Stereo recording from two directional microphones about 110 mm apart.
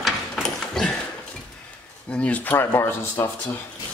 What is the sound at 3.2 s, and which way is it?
Speech, 30° left (ahead or behind).